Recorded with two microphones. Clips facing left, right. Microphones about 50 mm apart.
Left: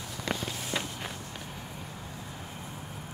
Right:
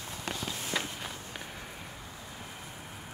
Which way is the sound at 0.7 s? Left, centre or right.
Centre.